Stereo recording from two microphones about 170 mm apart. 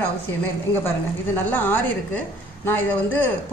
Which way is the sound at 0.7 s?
15° left (ahead or behind).